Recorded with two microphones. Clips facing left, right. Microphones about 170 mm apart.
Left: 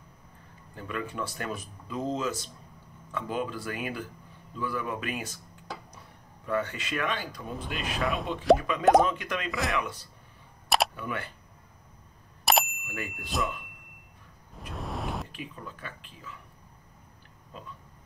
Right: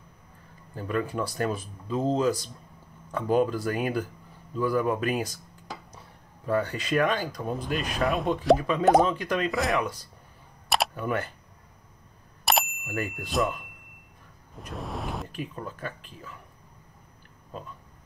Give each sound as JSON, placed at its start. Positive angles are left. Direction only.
{"t": 0.7, "sound": "speech", "side_deg": -40}
{"t": 6.4, "sound": "speech", "side_deg": -35}
{"t": 7.5, "sound": "speech", "side_deg": 0}
{"t": 8.5, "sound": "speech", "side_deg": -35}
{"t": 12.4, "sound": "bicycle bell", "side_deg": 0}
{"t": 12.8, "sound": "speech", "side_deg": -40}
{"t": 14.7, "sound": "vehicle", "side_deg": 0}
{"t": 15.3, "sound": "speech", "side_deg": -40}